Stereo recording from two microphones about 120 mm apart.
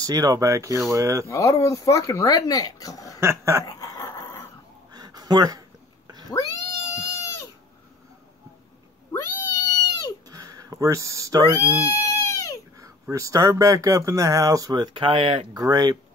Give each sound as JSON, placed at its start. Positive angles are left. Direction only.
{"t": 0.0, "sound": "speech", "side_deg": -30}
{"t": 1.3, "sound": "speech", "side_deg": 25}
{"t": 3.2, "sound": "speech", "side_deg": -20}
{"t": 3.6, "sound": "a sound", "side_deg": 25}
{"t": 4.9, "sound": "a sound", "side_deg": -30}
{"t": 7.0, "sound": "goat", "side_deg": 25}
{"t": 9.1, "sound": "cat", "side_deg": 30}
{"t": 10.2, "sound": "a sound", "side_deg": -30}
{"t": 11.6, "sound": "goat", "side_deg": 25}
{"t": 13.1, "sound": "speech", "side_deg": -30}
{"t": 15.5, "sound": "speech", "side_deg": -30}